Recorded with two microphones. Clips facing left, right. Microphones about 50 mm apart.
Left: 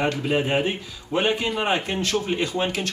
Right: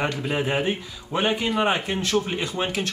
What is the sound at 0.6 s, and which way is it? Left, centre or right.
Speech, centre.